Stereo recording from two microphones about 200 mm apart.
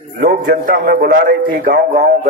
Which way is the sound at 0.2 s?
45° right (ahead or behind).